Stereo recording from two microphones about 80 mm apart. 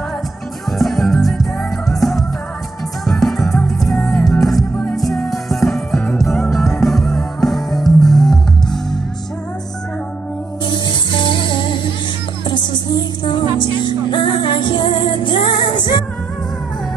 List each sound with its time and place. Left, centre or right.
0.7 s music: centre
10.6 s music: left
12.4 s music: left